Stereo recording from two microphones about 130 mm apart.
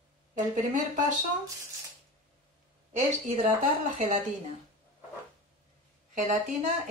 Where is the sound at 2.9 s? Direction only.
70° right (ahead or behind).